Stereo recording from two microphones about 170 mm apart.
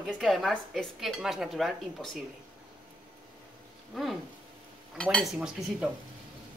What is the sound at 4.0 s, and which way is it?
Cutlery, centre (ahead or behind).